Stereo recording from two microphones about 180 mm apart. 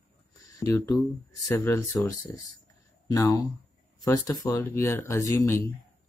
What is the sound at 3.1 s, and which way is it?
Speech, 20° left (ahead or behind).